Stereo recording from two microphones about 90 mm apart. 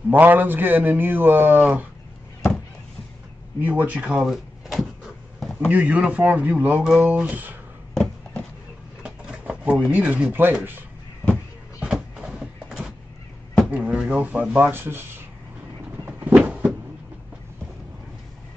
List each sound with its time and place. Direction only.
0.1 s a man's voice: 20° right (ahead or behind)
3.6 s speech: 15° right (ahead or behind)
4.2 s drawer open or close: 5° right (ahead or behind)
5.7 s speech: 15° right (ahead or behind)
6.8 s speech: 5° right (ahead or behind)
7.9 s a sound: 5° left (ahead or behind)
9.0 s speech: 10° right (ahead or behind)
11.8 s a sound: 10° right (ahead or behind)
13.7 s drawer open or close: 15° right (ahead or behind)
14.0 s a man's voice: 15° right (ahead or behind)
16.1 s a sound: 15° right (ahead or behind)